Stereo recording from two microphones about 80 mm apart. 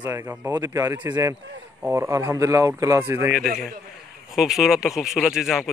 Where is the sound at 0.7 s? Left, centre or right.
Right.